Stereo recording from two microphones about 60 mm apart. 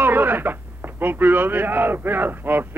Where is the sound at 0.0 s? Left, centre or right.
Right.